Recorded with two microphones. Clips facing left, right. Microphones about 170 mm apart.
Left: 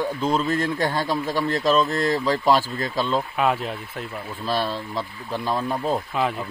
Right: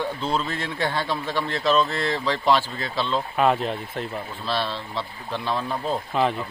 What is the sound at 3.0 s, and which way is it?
Speech, 5° left (ahead or behind).